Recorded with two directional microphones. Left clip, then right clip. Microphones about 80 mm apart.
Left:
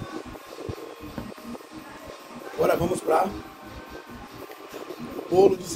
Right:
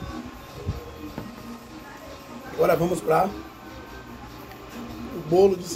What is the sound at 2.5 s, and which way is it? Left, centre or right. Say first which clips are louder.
Speech: right 2 dB; centre.